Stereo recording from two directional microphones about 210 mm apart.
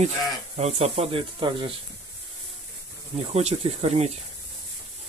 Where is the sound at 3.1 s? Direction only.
30° right (ahead or behind).